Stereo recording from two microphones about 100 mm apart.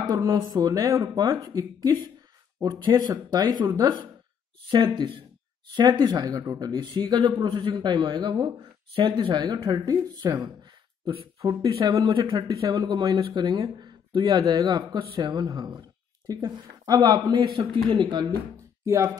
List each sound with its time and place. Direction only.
0.1 s speech: 40° right (ahead or behind)
2.6 s speech: 45° right (ahead or behind)
4.9 s speech: 55° right (ahead or behind)
5.8 s speech: 45° right (ahead or behind)
7.4 s speech: 65° right (ahead or behind)
7.7 s speech: 50° right (ahead or behind)
11.3 s speech: 40° right (ahead or behind); by 12.4 s 55° right (ahead or behind)
12.4 s speech: 45° right (ahead or behind)
18.9 s speech: 30° right (ahead or behind)